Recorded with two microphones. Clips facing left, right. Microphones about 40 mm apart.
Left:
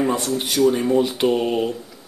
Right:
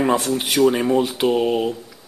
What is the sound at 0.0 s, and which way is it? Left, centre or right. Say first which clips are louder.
Speech: right 2 dB; right.